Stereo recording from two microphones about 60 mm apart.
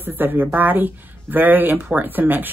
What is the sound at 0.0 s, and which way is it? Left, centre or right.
Speech, right.